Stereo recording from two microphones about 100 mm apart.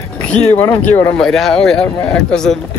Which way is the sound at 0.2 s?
10° left (ahead or behind).